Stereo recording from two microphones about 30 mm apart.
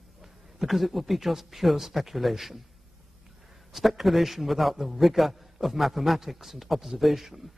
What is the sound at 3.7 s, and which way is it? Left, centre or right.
Speech, centre.